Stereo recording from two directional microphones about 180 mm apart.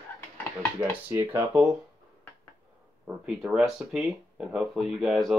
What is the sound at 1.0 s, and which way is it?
Speech, 15° right (ahead or behind).